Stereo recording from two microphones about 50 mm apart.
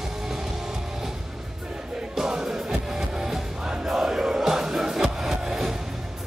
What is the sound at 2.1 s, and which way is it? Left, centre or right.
Music, centre.